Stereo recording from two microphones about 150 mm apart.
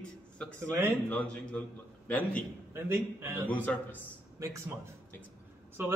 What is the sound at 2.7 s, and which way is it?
Speech, 15° right (ahead or behind).